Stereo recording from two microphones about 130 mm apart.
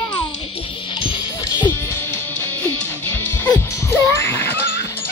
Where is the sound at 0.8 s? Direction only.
40° left (ahead or behind).